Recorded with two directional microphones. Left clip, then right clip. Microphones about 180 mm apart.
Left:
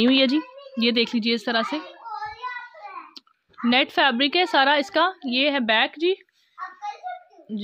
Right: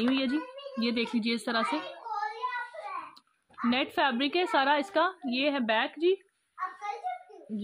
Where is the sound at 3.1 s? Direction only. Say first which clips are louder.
Left 1 dB; 45° left (ahead or behind).